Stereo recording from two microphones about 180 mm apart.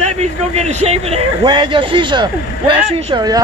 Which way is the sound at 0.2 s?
40° right (ahead or behind).